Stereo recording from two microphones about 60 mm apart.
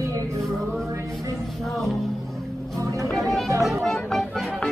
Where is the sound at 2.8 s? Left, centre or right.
Right.